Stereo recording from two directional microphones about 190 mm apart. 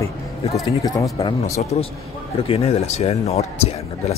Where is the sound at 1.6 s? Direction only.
35° left (ahead or behind).